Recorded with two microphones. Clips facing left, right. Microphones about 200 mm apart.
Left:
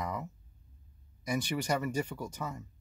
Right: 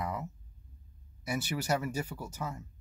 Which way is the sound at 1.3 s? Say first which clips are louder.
Even; 5° right (ahead or behind).